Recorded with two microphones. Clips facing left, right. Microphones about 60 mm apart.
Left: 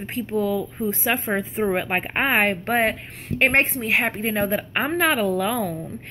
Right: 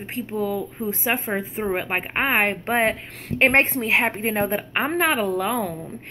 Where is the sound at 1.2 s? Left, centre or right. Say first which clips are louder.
Left 2 dB; centre.